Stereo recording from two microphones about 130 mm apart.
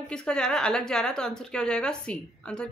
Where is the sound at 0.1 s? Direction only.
5° left (ahead or behind).